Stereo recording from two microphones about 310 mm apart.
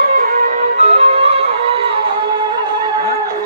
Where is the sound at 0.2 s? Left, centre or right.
Right.